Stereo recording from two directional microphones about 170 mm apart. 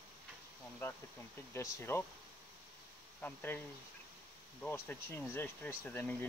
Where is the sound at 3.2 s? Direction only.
10° left (ahead or behind).